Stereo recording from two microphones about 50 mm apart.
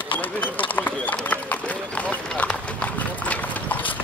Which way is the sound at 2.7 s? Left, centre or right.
Left.